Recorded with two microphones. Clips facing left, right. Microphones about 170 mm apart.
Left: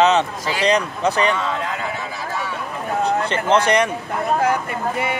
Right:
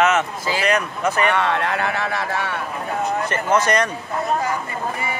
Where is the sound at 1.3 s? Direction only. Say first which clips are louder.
Right 2 dB; 70° right (ahead or behind).